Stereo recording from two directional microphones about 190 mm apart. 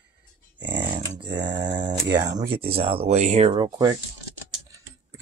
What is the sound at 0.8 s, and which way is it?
Speech, 25° right (ahead or behind).